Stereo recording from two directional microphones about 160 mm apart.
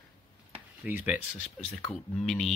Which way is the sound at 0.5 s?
10° right (ahead or behind).